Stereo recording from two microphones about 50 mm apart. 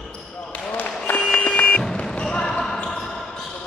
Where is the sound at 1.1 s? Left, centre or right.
Left.